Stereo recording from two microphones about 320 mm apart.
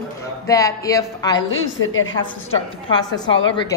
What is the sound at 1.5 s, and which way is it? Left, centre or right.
Speech, left.